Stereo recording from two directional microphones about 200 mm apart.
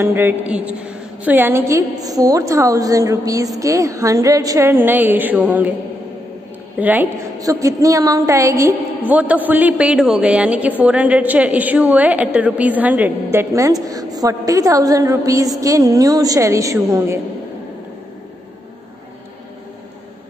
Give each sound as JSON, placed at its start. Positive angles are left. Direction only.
{"t": 0.0, "sound": "a woman's voice", "side_deg": -10}
{"t": 6.8, "sound": "a woman's voice", "side_deg": -10}